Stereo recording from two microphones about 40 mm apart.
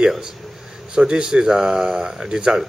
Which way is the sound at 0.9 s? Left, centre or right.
Centre.